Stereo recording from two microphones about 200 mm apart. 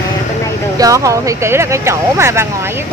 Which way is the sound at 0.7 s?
15° right (ahead or behind).